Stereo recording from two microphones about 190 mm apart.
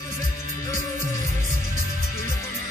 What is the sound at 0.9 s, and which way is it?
Music, 40° right (ahead or behind).